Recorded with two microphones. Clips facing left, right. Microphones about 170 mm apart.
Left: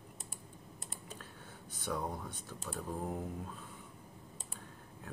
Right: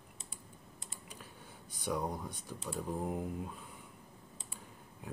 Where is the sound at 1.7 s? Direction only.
10° right (ahead or behind).